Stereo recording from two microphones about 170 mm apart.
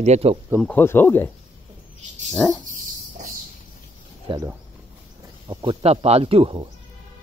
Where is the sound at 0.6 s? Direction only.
10° left (ahead or behind).